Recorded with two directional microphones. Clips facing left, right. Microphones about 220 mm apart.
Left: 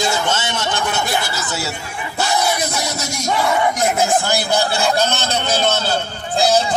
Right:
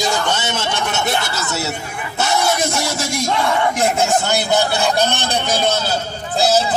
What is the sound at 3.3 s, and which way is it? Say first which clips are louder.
Speech: left 2 dB; 5° left (ahead or behind).